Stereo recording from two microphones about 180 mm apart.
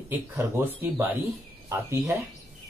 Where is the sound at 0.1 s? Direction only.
10° right (ahead or behind).